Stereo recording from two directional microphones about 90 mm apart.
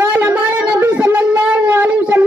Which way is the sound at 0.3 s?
20° right (ahead or behind).